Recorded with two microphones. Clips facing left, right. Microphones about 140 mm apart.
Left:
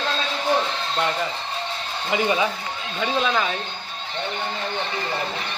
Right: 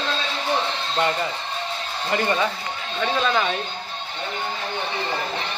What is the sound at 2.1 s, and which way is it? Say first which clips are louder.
Speech: left 1 dB; 10° left (ahead or behind).